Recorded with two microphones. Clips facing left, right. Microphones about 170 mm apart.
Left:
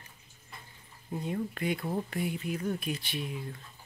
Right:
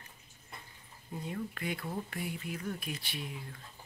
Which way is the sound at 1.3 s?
25° left (ahead or behind).